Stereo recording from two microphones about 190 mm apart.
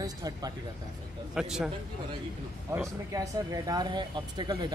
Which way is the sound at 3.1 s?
20° right (ahead or behind).